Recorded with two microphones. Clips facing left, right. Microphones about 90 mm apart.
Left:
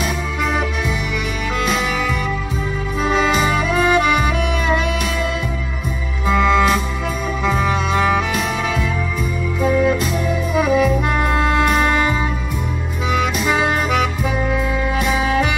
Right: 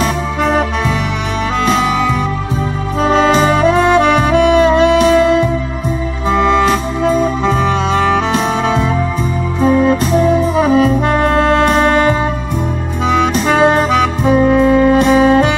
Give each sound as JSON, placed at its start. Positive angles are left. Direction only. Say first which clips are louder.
{"t": 0.0, "sound": "music", "louder": "right 6 dB", "side_deg": -35}
{"t": 3.0, "sound": "saxophone", "louder": "right 7 dB", "side_deg": -35}
{"t": 5.2, "sound": "music", "louder": "right 11 dB", "side_deg": -30}
{"t": 9.6, "sound": "music", "louder": "right 5 dB", "side_deg": -35}
{"t": 13.2, "sound": "saxophone", "louder": "right 7 dB", "side_deg": -35}
{"t": 15.0, "sound": "music", "louder": "right 9 dB", "side_deg": -35}